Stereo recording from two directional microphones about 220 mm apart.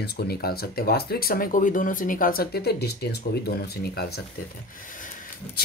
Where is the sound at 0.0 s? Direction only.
45° left (ahead or behind).